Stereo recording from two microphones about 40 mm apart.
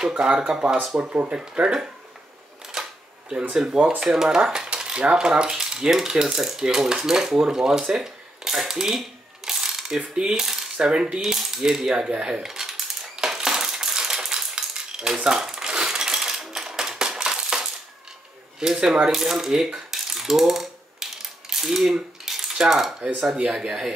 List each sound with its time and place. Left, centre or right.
0.5 s coin: centre
1.0 s speech: right
1.3 s speech: right
2.7 s camera: right
3.8 s coin: centre
4.4 s cutlery: right
10.4 s coin: centre
10.8 s speech: right
11.1 s coin: centre
15.2 s a sound: centre
18.6 s coin: centre
19.9 s mechanisms: centre
22.2 s coin: centre
23.3 s speech: right